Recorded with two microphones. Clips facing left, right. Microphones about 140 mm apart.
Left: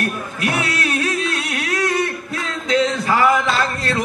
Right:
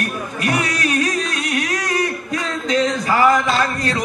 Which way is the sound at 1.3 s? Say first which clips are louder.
Right 2 dB; 45° right (ahead or behind).